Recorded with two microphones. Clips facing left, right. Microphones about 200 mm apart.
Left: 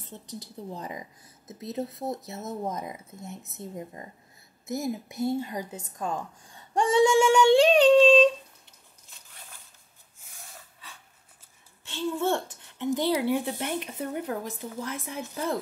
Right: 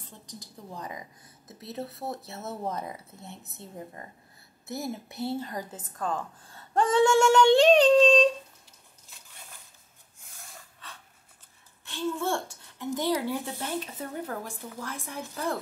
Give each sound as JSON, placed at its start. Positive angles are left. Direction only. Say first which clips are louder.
{"t": 0.7, "sound": "a woman's voice", "louder": "left 2 dB", "side_deg": 25}
{"t": 11.9, "sound": "a woman's voice", "louder": "left 2 dB", "side_deg": 20}